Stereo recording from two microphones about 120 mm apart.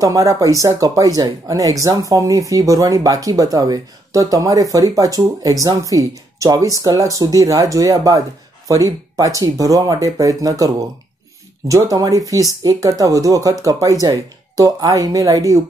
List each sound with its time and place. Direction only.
0.0 s speech: 30° right (ahead or behind)